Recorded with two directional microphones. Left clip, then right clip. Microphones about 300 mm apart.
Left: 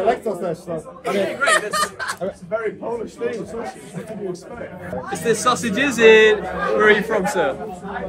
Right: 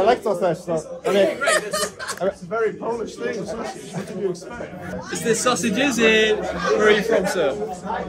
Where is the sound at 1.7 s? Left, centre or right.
Centre.